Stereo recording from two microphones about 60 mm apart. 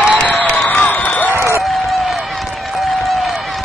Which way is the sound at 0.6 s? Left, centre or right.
Left.